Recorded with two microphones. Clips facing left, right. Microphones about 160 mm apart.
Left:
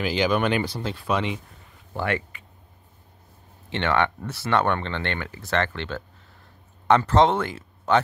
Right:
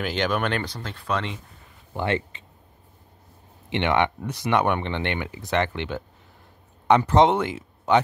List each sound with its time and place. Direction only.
0.0 s speech: centre (ahead or behind)
2.0 s speech: 25° right (ahead or behind)
3.7 s speech: 15° right (ahead or behind)